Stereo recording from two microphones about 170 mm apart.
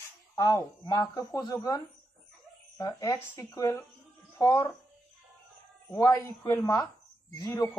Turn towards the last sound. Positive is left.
turn(degrees=20)  # may be behind; listen again after turning